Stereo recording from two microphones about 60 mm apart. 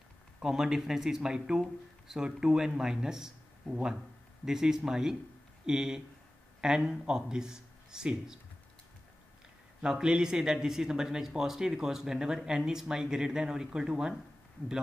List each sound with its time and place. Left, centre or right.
0.4 s speech: centre
9.8 s speech: centre